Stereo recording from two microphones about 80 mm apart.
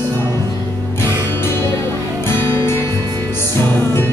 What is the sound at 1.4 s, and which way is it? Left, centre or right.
Music, left.